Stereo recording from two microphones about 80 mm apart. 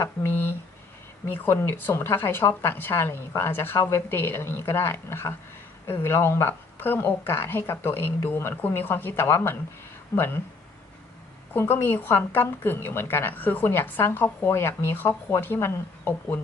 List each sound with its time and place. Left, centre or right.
0.0 s a woman's voice: left
11.5 s a woman's voice: left